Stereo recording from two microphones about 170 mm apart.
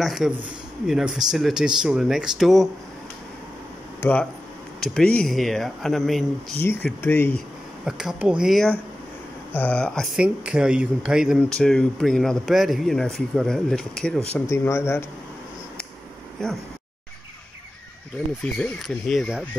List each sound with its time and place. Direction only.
0.0 s speech: centre (ahead or behind)
4.0 s speech: 10° left (ahead or behind)
6.6 s speech: 15° left (ahead or behind)
7.8 s speech: 5° right (ahead or behind)
14.4 s speech: 15° left (ahead or behind)
18.4 s speech: 5° left (ahead or behind)